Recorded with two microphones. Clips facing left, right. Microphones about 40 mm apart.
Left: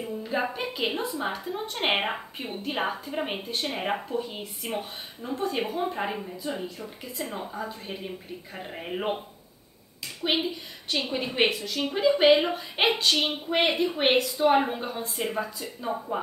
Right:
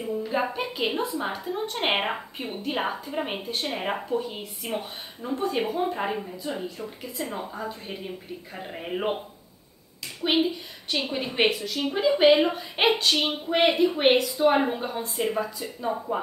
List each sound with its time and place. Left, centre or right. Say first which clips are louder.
0.0 s a woman's voice: right 2 dB; centre
10.2 s a woman's voice: right 3 dB; centre